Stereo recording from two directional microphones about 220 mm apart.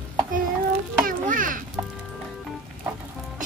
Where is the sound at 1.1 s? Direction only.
35° right (ahead or behind).